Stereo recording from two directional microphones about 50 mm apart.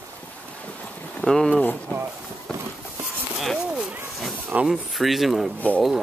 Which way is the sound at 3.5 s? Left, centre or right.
Centre.